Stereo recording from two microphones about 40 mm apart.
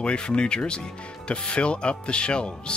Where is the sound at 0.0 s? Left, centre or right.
Left.